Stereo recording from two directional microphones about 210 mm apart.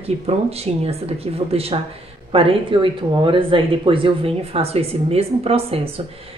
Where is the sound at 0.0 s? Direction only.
30° right (ahead or behind).